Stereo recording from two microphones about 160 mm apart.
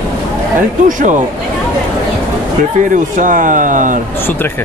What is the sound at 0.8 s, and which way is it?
Speech, 50° right (ahead or behind).